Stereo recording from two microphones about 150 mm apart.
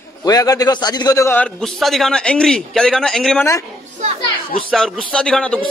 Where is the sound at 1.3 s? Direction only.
5° left (ahead or behind).